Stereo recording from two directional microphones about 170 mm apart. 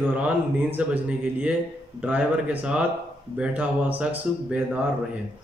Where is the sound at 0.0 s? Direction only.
10° right (ahead or behind).